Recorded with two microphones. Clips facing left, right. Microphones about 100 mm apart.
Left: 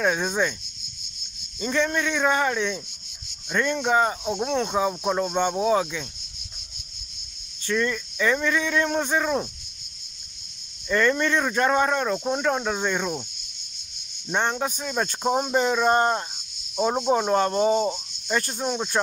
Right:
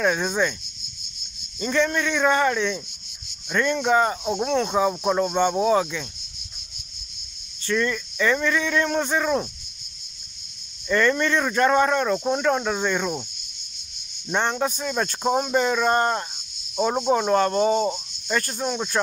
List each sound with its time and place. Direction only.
0.0 s speech: 5° left (ahead or behind)
1.6 s speech: 10° left (ahead or behind)
4.2 s speech: 5° right (ahead or behind)
7.6 s speech: 10° left (ahead or behind)
10.9 s speech: 10° left (ahead or behind)
14.3 s speech: 5° left (ahead or behind)